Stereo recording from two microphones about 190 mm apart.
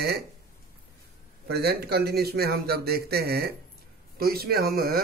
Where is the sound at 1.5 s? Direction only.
55° right (ahead or behind).